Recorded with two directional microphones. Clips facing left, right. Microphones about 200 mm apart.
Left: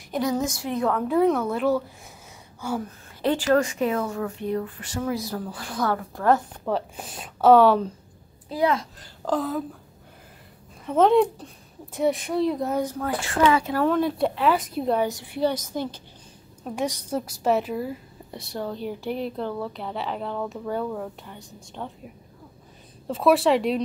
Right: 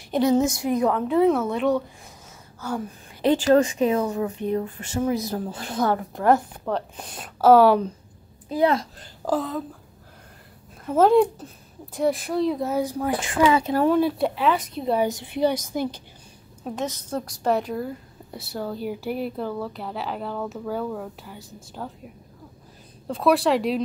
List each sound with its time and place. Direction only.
0.1 s speech: 25° right (ahead or behind)
0.9 s a woman's voice: centre (ahead or behind)
3.2 s speech: 15° right (ahead or behind)
6.6 s a woman's voice: 5° left (ahead or behind)
9.2 s a woman's voice: 5° right (ahead or behind)
10.9 s a woman's voice: 5° right (ahead or behind)
15.0 s a woman's voice: 20° right (ahead or behind)
16.7 s a woman's voice: 10° left (ahead or behind)